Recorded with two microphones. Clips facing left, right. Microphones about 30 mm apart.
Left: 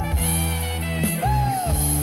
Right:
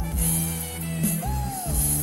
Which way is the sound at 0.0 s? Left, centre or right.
Left.